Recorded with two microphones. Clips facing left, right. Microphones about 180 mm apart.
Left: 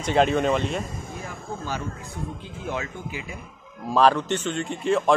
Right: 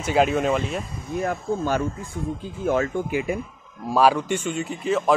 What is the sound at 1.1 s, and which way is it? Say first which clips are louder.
Speech: right 15 dB; 60° right (ahead or behind).